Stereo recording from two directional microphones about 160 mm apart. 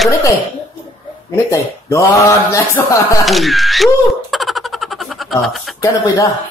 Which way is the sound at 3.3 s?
Centre (ahead or behind).